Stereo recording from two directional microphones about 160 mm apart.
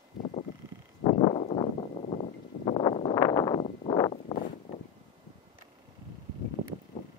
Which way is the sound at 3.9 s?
35° left (ahead or behind).